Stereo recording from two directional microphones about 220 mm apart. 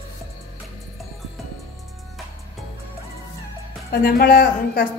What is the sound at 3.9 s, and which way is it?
A woman's voice, 45° left (ahead or behind).